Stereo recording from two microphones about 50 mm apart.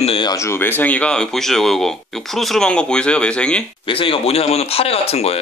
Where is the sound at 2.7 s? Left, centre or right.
Centre.